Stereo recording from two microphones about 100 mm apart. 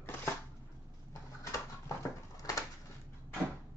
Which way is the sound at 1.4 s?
35° left (ahead or behind).